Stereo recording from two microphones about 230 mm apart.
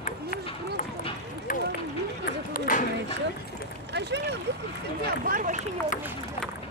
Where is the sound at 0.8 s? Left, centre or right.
Left.